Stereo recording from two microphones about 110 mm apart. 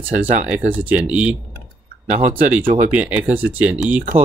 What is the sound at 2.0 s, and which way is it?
Speech, 90° right.